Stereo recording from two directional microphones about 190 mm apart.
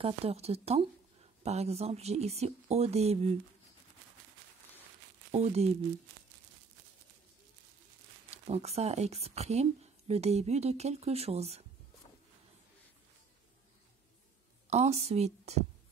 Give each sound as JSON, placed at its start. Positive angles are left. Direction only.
{"t": 0.0, "sound": "speech", "side_deg": -30}
{"t": 5.3, "sound": "speech", "side_deg": -35}
{"t": 8.3, "sound": "speech", "side_deg": -35}
{"t": 14.7, "sound": "speech", "side_deg": -35}